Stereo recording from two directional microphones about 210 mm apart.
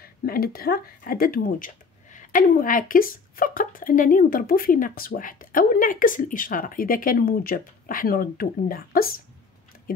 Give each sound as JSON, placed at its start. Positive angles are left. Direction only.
{"t": 0.0, "sound": "speech", "side_deg": 45}